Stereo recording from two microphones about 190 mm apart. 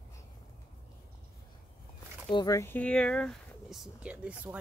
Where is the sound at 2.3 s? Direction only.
20° left (ahead or behind).